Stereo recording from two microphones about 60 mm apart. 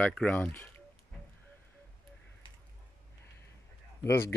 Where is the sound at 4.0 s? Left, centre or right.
Left.